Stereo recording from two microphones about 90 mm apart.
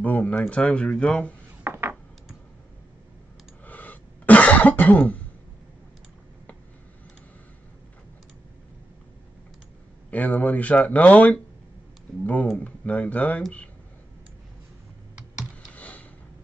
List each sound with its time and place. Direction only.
0.0 s speech: 15° left (ahead or behind)
1.6 s a sound: 25° right (ahead or behind)
3.6 s cough: 20° left (ahead or behind)
10.1 s speech: 15° left (ahead or behind)
12.5 s speech: 15° left (ahead or behind)
15.7 s sniff: 15° left (ahead or behind)